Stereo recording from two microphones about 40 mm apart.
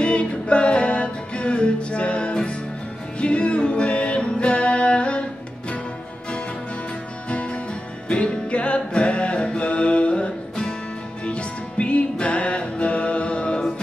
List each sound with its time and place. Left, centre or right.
0.0 s music: left
7.2 s music: left